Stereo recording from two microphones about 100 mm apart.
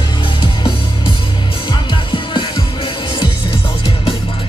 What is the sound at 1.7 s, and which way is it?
Music, 50° left (ahead or behind).